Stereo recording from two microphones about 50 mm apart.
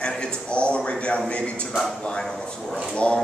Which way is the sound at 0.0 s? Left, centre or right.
Centre.